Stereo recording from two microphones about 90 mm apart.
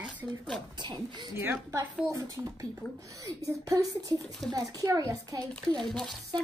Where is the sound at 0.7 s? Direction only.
55° right (ahead or behind).